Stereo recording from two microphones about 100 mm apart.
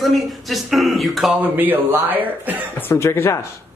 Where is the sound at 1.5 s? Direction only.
20° right (ahead or behind).